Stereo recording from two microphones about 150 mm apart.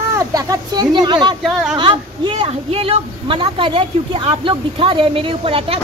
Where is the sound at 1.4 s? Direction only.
5° right (ahead or behind).